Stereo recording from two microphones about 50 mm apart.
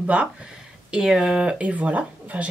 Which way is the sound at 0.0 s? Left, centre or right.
Right.